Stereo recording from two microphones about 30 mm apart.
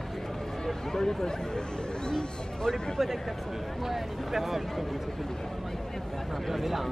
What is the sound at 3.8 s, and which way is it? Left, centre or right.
Speech, centre.